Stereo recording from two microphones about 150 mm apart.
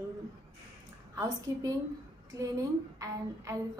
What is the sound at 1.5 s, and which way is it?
Speech, 20° right (ahead or behind).